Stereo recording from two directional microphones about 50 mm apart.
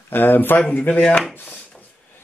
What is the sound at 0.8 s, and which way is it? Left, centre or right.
Speech, left.